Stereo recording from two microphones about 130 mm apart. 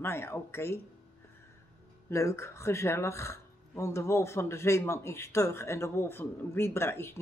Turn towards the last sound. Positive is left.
turn(degrees=20)  # may be behind; listen again after turning